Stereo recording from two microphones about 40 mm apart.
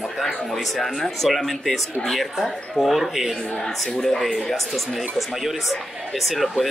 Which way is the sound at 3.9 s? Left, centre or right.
Centre.